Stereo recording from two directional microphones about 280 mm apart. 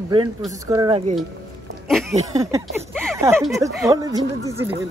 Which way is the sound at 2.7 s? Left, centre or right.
Centre.